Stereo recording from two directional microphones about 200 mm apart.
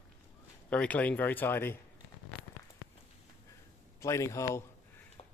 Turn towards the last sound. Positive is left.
turn(degrees=15)  # may be behind; listen again after turning